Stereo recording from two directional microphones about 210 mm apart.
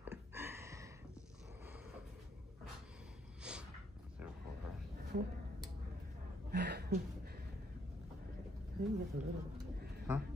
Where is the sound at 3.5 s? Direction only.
5° right (ahead or behind).